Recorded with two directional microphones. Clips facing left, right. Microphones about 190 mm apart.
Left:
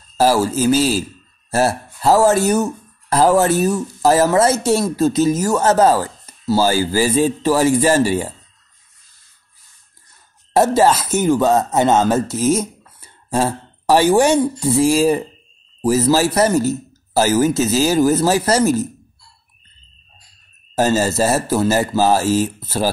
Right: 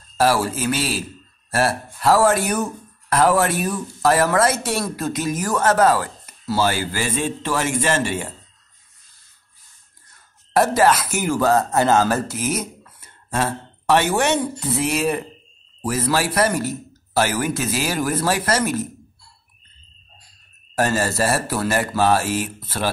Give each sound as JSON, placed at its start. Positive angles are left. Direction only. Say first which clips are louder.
{"t": 0.2, "sound": "speech", "louder": "left 4 dB", "side_deg": 30}
{"t": 10.5, "sound": "speech", "louder": "left 3 dB", "side_deg": 25}
{"t": 20.7, "sound": "speech", "louder": "left 4 dB", "side_deg": 25}